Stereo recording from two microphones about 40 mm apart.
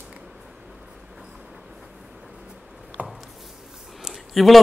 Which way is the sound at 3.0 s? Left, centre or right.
Right.